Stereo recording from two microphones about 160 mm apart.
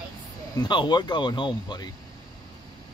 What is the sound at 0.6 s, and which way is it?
Speech, 30° left (ahead or behind).